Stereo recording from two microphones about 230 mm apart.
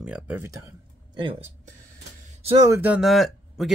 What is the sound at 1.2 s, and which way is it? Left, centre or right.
Speech, right.